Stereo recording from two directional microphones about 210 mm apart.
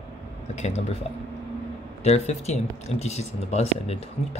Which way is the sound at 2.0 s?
30° left (ahead or behind).